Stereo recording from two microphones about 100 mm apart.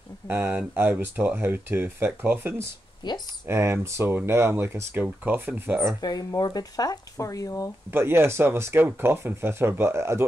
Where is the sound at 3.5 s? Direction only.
25° right (ahead or behind).